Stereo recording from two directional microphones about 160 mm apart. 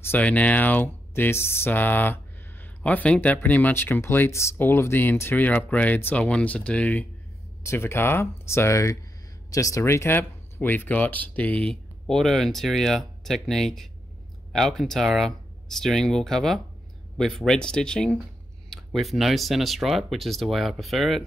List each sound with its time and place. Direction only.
0.0 s speech: 10° left (ahead or behind)